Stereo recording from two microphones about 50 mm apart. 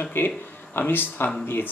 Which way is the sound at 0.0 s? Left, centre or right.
Left.